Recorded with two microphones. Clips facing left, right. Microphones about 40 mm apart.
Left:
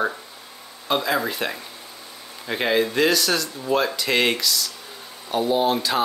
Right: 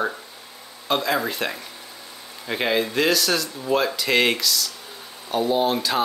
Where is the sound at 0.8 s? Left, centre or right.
Centre.